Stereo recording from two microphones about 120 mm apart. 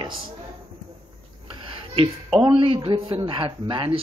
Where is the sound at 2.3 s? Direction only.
45° right (ahead or behind).